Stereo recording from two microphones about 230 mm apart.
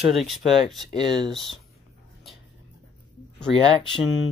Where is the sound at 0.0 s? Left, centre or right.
Centre.